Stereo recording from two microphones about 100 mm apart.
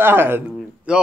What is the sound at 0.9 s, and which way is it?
Speech, 10° right (ahead or behind).